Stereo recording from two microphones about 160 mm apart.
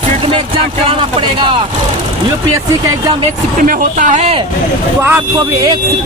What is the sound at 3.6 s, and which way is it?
Speech, 55° right (ahead or behind).